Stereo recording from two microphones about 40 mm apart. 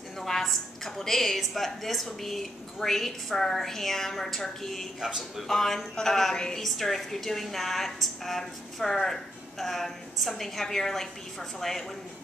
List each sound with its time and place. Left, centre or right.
0.2 s a woman's voice: centre
6.3 s a woman's voice: left
6.6 s a woman's voice: centre